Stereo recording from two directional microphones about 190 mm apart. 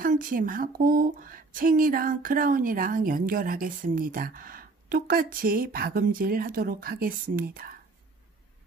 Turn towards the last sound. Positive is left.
turn(degrees=-50)  # may be behind; listen again after turning